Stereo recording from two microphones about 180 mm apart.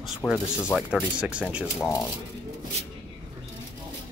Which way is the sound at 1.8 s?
20° left (ahead or behind).